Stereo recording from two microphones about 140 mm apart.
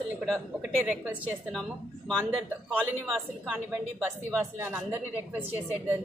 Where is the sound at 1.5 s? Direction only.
Centre (ahead or behind).